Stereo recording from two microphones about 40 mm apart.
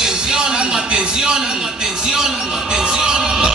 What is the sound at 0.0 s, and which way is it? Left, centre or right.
Music, centre.